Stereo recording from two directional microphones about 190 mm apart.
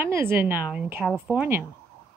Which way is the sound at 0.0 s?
10° right (ahead or behind).